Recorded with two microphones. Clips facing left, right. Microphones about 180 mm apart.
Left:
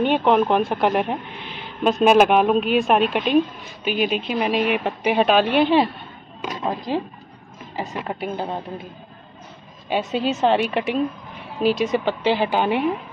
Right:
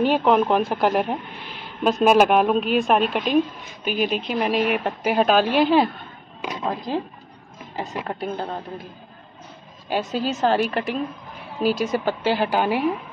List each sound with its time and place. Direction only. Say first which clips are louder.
0.0 s speech: even; centre (ahead or behind)
9.8 s speech: left 2 dB; centre (ahead or behind)
11.6 s speech: left 2 dB; centre (ahead or behind)